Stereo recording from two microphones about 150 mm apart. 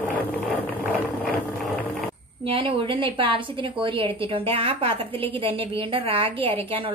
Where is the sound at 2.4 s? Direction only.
40° right (ahead or behind).